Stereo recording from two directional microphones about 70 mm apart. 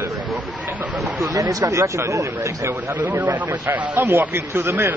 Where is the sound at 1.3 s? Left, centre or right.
Right.